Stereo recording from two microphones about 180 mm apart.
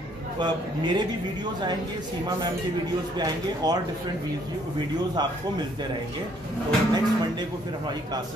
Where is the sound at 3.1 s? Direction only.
20° right (ahead or behind).